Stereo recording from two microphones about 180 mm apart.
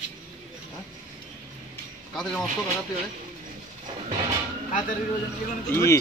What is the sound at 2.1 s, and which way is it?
Speech, 5° left (ahead or behind).